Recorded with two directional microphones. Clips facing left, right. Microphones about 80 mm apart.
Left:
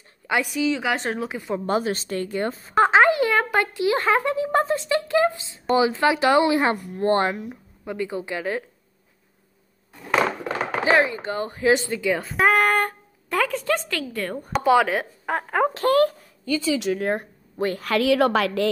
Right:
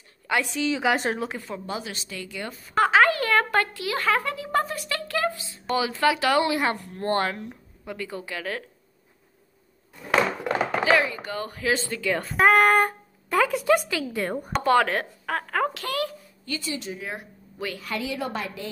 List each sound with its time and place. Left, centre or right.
0.3 s speech: centre
0.7 s a woman's voice: centre
1.7 s speech: left
2.8 s speech: left
10.8 s speech: left
12.2 s a woman's voice: centre
14.5 s speech: centre
15.2 s speech: centre
15.7 s speech: left
16.7 s speech: left
17.0 s speech: left
17.8 s a woman's voice: left